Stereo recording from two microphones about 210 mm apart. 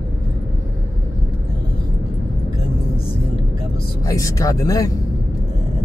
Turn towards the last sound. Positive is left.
turn(degrees=15)  # may be behind; listen again after turning